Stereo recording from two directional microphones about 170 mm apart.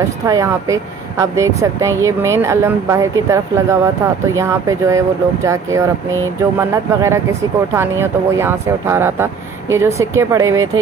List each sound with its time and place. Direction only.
0.3 s speech: 20° right (ahead or behind)